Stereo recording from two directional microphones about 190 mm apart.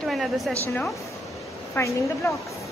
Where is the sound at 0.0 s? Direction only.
Centre (ahead or behind).